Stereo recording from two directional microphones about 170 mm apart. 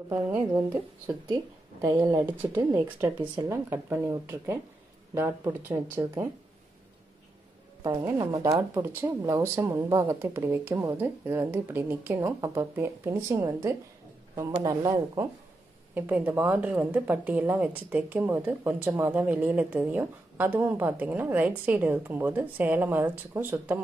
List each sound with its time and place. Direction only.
0.1 s a woman's voice: 10° right (ahead or behind)
7.8 s a woman's voice: 20° right (ahead or behind)